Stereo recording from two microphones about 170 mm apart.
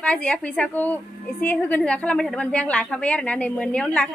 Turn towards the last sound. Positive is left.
turn(degrees=5)  # may be behind; listen again after turning